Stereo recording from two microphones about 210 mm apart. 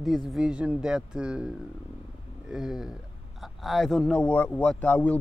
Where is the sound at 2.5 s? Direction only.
Centre (ahead or behind).